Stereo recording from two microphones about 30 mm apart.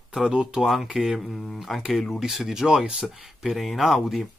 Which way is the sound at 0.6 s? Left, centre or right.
Centre.